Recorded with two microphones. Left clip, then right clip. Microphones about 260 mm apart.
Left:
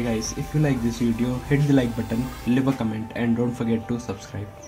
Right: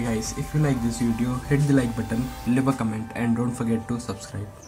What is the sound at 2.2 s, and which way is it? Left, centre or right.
Speech, centre.